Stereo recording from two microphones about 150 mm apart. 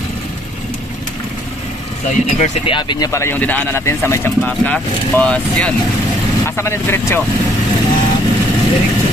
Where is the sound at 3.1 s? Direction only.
15° left (ahead or behind).